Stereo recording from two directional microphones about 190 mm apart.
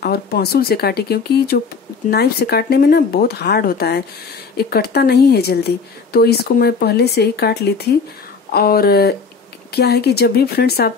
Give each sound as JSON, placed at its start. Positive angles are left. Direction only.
{"t": 0.0, "sound": "speech", "side_deg": 55}